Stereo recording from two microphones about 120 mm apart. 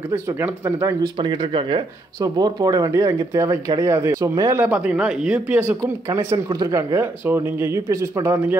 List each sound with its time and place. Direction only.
0.1 s speech: 20° right (ahead or behind)
1.1 s speech: 40° right (ahead or behind)
2.1 s speech: 30° right (ahead or behind)
4.6 s speech: 10° right (ahead or behind)
6.0 s speech: 30° right (ahead or behind)